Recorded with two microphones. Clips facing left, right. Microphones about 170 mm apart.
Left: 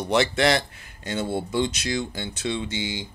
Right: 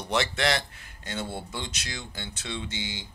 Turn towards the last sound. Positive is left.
turn(degrees=15)  # may be behind; listen again after turning